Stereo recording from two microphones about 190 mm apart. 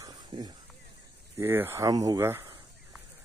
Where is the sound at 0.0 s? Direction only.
20° right (ahead or behind).